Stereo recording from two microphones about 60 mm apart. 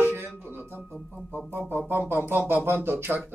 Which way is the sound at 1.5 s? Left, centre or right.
Right.